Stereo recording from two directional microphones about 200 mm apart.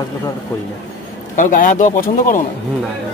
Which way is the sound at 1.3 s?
40° left (ahead or behind).